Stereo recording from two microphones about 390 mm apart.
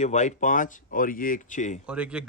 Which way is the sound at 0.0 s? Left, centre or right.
Centre.